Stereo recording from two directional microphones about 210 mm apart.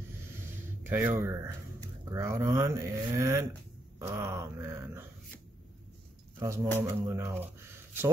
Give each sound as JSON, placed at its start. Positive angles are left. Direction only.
{"t": 0.8, "sound": "speech", "side_deg": -10}
{"t": 6.4, "sound": "speech", "side_deg": -15}